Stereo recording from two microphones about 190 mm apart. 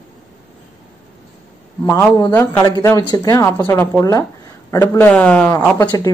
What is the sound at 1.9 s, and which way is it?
Speech, 10° left (ahead or behind).